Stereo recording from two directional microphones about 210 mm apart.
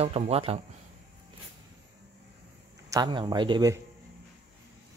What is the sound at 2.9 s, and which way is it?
Speech, 20° right (ahead or behind).